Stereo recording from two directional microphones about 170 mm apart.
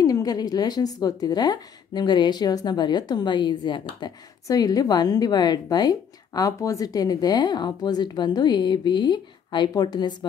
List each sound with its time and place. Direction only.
0.0 s a woman's voice: 20° left (ahead or behind)